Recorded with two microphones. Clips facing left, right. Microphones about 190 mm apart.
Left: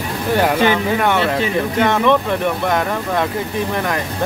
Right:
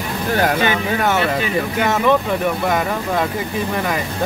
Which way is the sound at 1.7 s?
5° right (ahead or behind).